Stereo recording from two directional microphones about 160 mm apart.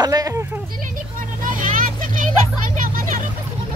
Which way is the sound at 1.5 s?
55° right (ahead or behind).